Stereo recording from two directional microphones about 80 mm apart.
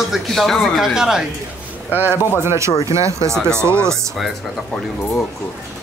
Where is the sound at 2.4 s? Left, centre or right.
Right.